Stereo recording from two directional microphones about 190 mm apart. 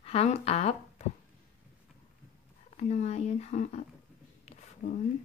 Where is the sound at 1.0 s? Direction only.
35° left (ahead or behind).